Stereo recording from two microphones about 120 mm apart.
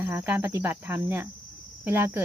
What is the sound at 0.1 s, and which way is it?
Speech, 15° right (ahead or behind).